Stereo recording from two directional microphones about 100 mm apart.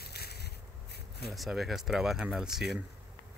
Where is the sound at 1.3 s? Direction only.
Centre (ahead or behind).